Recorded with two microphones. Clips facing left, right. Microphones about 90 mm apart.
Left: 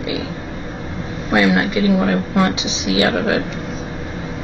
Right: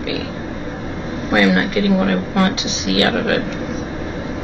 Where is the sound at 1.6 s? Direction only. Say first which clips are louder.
Even; 15° left (ahead or behind).